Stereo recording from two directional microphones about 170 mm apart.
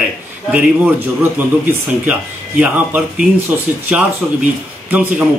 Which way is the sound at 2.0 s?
10° right (ahead or behind).